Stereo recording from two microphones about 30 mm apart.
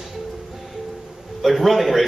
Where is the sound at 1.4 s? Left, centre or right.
Centre.